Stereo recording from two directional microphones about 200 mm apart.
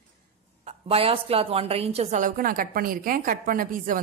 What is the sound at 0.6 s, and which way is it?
A woman's voice, 30° right (ahead or behind).